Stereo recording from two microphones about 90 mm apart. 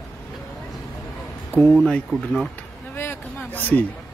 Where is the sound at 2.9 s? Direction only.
25° left (ahead or behind).